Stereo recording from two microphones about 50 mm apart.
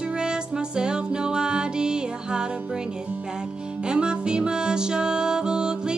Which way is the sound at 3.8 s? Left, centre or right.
Centre.